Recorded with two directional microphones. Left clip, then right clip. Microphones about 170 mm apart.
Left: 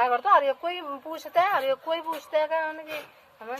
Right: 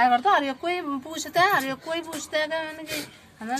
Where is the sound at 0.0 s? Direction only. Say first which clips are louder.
Right 1 dB; 40° left (ahead or behind).